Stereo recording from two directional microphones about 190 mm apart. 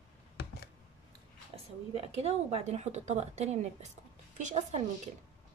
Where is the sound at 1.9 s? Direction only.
35° right (ahead or behind).